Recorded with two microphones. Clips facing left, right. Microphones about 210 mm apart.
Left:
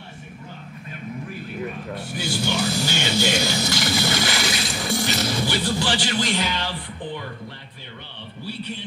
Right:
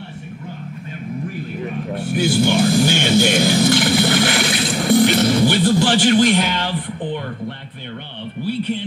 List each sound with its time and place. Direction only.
2.1 s music: 55° right (ahead or behind)